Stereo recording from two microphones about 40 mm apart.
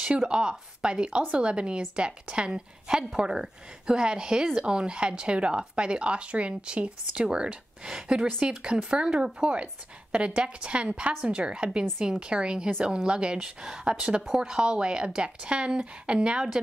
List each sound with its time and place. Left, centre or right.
0.3 s speech: right